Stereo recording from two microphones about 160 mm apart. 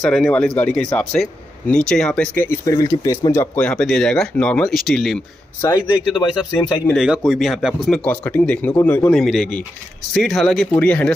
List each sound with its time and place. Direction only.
0.0 s speech: 5° left (ahead or behind)
5.6 s speech: 20° left (ahead or behind)
6.9 s speech: centre (ahead or behind)